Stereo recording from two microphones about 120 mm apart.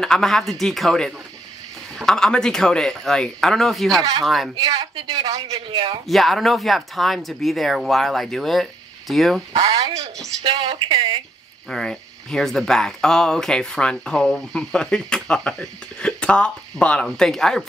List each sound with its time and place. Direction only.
0.0 s speech: 5° left (ahead or behind)
4.0 s speech: 30° right (ahead or behind)
5.3 s a man's voice: 55° right (ahead or behind)
6.0 s speech: centre (ahead or behind)
9.5 s speech: 30° right (ahead or behind)
10.4 s a man's voice: 50° right (ahead or behind)
11.7 s speech: 5° left (ahead or behind)